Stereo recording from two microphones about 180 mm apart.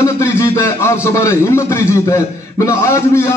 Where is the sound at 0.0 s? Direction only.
15° left (ahead or behind).